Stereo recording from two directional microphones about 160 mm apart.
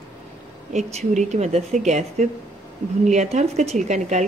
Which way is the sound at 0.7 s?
45° right (ahead or behind).